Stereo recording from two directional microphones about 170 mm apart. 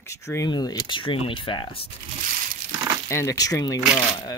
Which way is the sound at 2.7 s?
25° right (ahead or behind).